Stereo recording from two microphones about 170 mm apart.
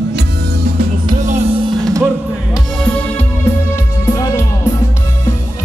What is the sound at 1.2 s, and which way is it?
Music, 40° right (ahead or behind).